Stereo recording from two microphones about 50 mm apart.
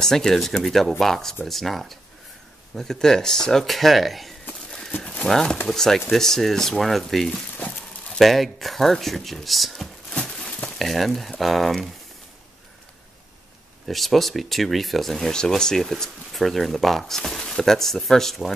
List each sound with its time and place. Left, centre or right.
0.0 s speech: centre
4.6 s a sound: centre
5.0 s horse: left
5.3 s speech: centre
7.5 s a sound: left
8.2 s speech: centre
10.1 s a sound: centre
10.8 s speech: centre
13.8 s speech: centre